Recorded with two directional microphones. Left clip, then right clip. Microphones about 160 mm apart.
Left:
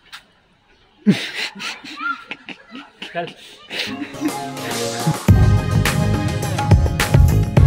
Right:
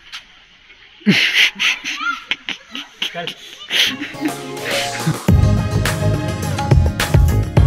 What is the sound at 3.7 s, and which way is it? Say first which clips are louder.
Music: right 9 dB; 5° left (ahead or behind).